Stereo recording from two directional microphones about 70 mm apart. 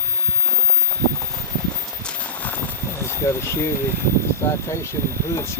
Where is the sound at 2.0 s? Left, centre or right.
Left.